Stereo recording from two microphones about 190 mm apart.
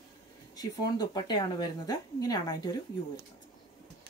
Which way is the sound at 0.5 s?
20° left (ahead or behind).